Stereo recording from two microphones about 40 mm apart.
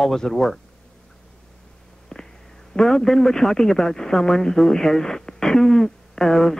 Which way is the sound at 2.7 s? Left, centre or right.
Centre.